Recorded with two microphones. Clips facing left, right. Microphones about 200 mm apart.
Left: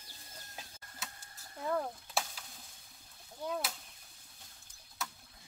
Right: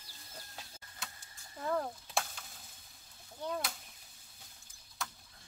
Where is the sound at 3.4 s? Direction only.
5° left (ahead or behind).